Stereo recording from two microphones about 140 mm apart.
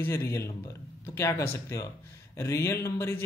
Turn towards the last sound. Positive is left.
turn(degrees=20)  # may be behind; listen again after turning